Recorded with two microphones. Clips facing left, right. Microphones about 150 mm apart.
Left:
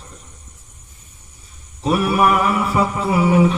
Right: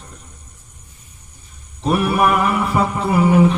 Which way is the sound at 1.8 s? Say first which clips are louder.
Even; 5° left (ahead or behind).